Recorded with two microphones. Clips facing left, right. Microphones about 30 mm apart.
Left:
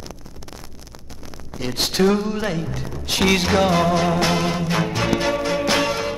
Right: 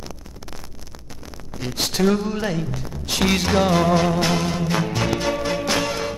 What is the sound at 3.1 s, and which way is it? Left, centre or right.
Music, centre.